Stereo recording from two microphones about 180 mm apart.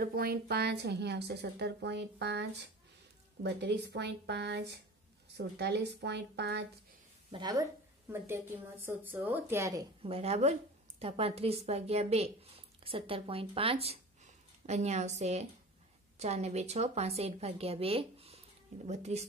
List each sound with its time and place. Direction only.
0.0 s a woman's voice: 60° right (ahead or behind)
3.4 s a woman's voice: 70° right (ahead or behind)
7.2 s speech: 25° right (ahead or behind)
8.1 s a woman's voice: 15° right (ahead or behind)
10.0 s a woman's voice: 35° right (ahead or behind)